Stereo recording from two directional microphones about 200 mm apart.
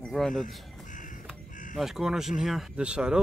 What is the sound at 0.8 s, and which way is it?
Crow, 40° left (ahead or behind).